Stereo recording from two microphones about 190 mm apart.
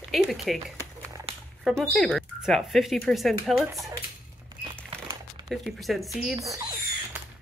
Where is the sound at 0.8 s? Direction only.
15° right (ahead or behind).